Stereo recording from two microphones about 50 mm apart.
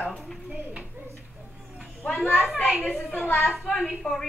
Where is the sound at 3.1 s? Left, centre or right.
Left.